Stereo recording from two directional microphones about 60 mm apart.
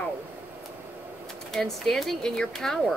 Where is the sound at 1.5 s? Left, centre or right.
Centre.